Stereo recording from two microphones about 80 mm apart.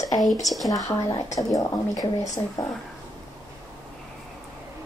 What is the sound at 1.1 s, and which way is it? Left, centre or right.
Speech, left.